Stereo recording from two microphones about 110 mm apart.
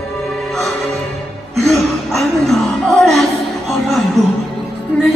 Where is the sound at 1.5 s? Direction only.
Centre (ahead or behind).